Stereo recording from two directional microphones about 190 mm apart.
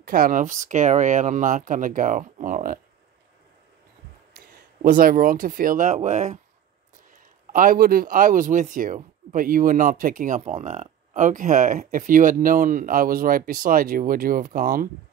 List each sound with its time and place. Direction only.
0.0 s speech: 45° right (ahead or behind)
4.8 s speech: 45° right (ahead or behind)
7.5 s speech: 45° right (ahead or behind)